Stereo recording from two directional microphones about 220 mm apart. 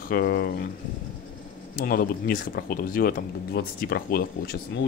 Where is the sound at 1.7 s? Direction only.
40° left (ahead or behind).